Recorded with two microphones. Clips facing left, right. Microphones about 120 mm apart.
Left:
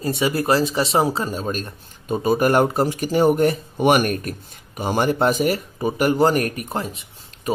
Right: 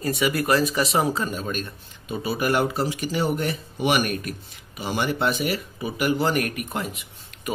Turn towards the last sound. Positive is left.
turn(degrees=30)  # may be behind; listen again after turning